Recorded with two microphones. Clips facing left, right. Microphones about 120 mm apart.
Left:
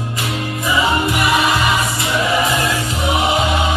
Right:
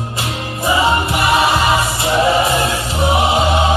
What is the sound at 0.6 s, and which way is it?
Music, 30° right (ahead or behind).